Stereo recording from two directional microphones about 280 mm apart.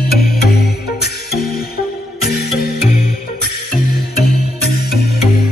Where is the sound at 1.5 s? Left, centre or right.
Left.